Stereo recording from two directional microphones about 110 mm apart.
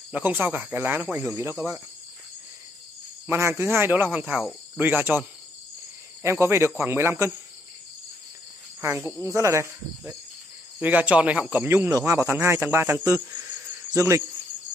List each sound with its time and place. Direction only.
0.1 s speech: 15° right (ahead or behind)
3.3 s speech: 25° right (ahead or behind); by 4.6 s 5° right (ahead or behind)
4.7 s speech: 15° right (ahead or behind)
6.2 s speech: 25° right (ahead or behind)
9.2 s speech: 25° right (ahead or behind)
10.8 s speech: 15° right (ahead or behind)
11.6 s speech: 20° right (ahead or behind)